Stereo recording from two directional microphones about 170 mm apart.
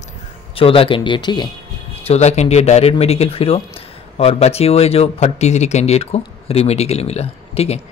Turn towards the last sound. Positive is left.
turn(degrees=35)  # may be behind; listen again after turning